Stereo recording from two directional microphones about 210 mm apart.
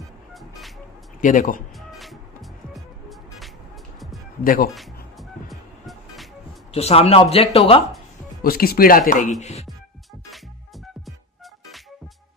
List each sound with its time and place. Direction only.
0.3 s music: centre (ahead or behind)
1.2 s speech: 40° left (ahead or behind)
1.8 s music: centre (ahead or behind)
4.4 s speech: 45° left (ahead or behind)
5.1 s music: centre (ahead or behind)
6.7 s speech: 30° left (ahead or behind)
8.4 s speech: 45° left (ahead or behind)